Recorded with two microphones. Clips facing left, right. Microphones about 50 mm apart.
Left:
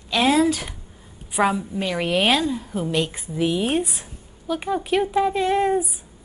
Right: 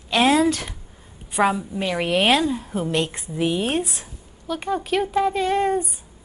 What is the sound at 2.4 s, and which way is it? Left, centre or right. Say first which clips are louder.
Speech: right 1 dB; centre.